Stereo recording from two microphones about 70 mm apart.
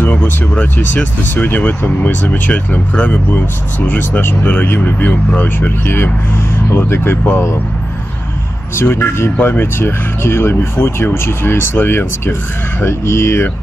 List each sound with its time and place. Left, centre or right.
0.0 s speech: left
8.7 s speech: left